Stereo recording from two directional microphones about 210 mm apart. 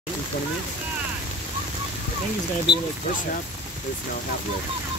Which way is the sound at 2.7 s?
25° left (ahead or behind).